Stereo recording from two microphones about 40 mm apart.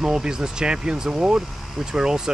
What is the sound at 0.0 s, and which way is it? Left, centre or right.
Speech, centre.